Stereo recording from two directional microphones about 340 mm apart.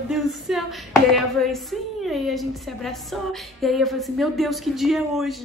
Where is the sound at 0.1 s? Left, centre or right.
Centre.